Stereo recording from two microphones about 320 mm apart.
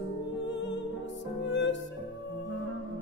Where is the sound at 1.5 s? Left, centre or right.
Left.